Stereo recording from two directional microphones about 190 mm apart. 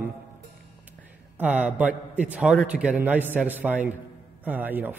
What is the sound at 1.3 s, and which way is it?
A man's voice, 10° right (ahead or behind).